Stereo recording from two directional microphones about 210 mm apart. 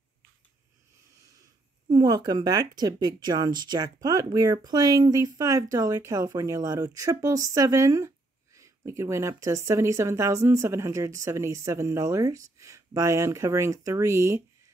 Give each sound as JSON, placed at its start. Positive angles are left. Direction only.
{"t": 1.9, "sound": "speech", "side_deg": -20}